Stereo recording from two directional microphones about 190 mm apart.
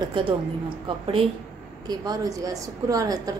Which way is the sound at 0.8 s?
30° right (ahead or behind).